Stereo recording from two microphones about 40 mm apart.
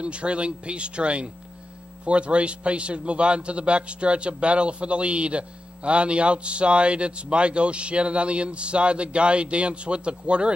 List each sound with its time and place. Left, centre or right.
0.0 s a man's voice: right